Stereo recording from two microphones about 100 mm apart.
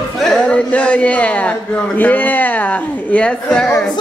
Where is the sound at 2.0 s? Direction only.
15° left (ahead or behind).